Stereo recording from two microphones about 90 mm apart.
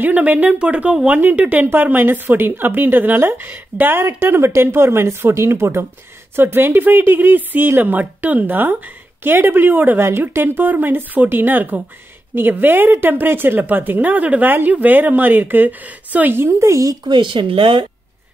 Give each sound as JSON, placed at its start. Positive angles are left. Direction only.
{"t": 0.0, "sound": "speech", "side_deg": -15}
{"t": 17.0, "sound": "speech", "side_deg": -60}